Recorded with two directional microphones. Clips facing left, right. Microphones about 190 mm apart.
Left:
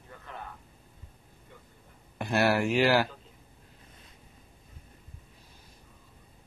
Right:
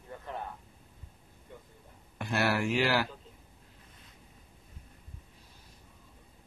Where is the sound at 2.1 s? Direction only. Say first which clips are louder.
Left 4 dB; 40° left (ahead or behind).